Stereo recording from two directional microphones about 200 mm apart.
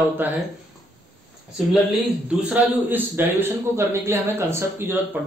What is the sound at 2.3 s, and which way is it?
Speech, 5° right (ahead or behind).